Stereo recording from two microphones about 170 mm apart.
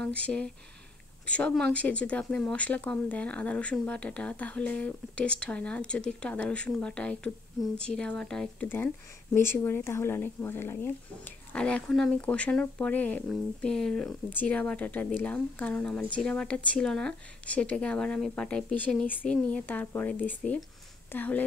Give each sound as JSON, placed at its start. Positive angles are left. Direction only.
{"t": 0.0, "sound": "speech", "side_deg": 5}